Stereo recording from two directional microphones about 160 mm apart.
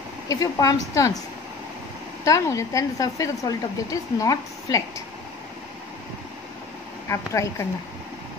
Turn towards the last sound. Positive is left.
turn(degrees=20)  # may be behind; listen again after turning